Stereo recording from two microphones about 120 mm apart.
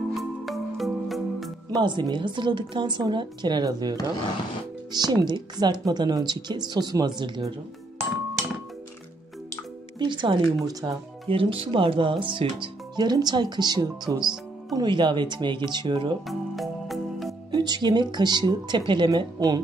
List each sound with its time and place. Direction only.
0.1 s music: centre (ahead or behind)
1.7 s a woman's voice: 40° right (ahead or behind)
4.9 s a woman's voice: 35° right (ahead or behind)
9.9 s speech: 40° right (ahead or behind)
10.6 s a woman's voice: 30° right (ahead or behind)
11.2 s speech: 50° right (ahead or behind)
14.2 s music: 5° right (ahead or behind)
14.8 s a woman's voice: 40° right (ahead or behind)
16.3 s music: centre (ahead or behind)
17.5 s a woman's voice: 35° right (ahead or behind)